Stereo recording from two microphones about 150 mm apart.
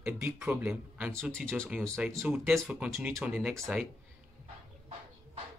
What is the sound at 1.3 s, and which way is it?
Speech, 5° left (ahead or behind).